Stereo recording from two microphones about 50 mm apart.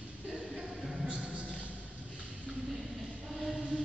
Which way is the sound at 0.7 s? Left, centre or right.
Centre.